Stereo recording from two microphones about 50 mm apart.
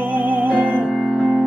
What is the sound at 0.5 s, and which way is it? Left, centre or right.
Music, left.